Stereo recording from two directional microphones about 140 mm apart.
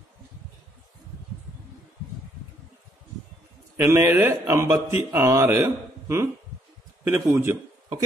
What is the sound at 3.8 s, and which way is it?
Speech, 20° right (ahead or behind).